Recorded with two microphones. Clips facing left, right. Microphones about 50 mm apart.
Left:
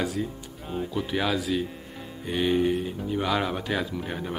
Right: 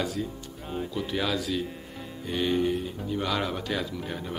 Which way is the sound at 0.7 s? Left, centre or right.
Centre.